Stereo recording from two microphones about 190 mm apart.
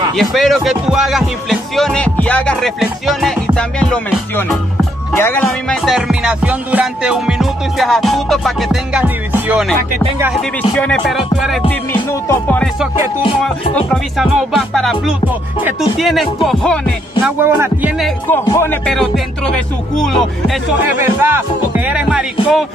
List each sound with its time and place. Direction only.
0.1 s speech: centre (ahead or behind)
5.1 s music: 10° left (ahead or behind)
5.4 s speech: centre (ahead or behind)
10.7 s speech: 5° left (ahead or behind)
11.9 s music: 10° left (ahead or behind)
13.2 s music: 30° left (ahead or behind)
14.1 s speech: centre (ahead or behind)
17.2 s speech: 10° right (ahead or behind)
18.3 s music: 10° left (ahead or behind)
18.9 s speech: 5° left (ahead or behind)
21.0 s speech: 10° right (ahead or behind)